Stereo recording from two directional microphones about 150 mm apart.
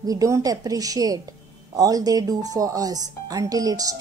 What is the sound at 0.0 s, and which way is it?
A woman's voice, 25° right (ahead or behind).